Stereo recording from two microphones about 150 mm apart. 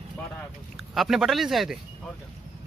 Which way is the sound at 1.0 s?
Centre (ahead or behind).